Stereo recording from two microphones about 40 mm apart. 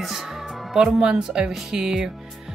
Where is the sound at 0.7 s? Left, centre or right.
Centre.